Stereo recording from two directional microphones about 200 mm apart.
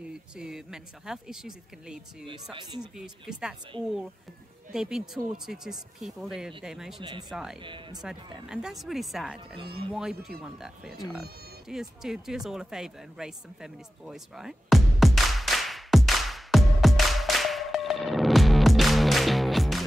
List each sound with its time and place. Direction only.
0.1 s speech: 5° right (ahead or behind)
2.5 s speech: 20° right (ahead or behind)
3.0 s speech: 5° right (ahead or behind)
4.7 s speech: 5° right (ahead or behind)
7.0 s speech: 20° right (ahead or behind)
7.2 s speech: centre (ahead or behind)
7.6 s speech: 25° right (ahead or behind)
8.0 s speech: 5° right (ahead or behind)
12.4 s a sound: centre (ahead or behind)